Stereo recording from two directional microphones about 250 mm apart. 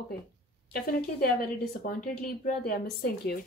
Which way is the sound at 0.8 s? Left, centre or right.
Left.